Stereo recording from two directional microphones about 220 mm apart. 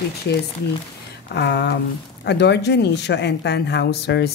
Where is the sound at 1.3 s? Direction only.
50° left (ahead or behind).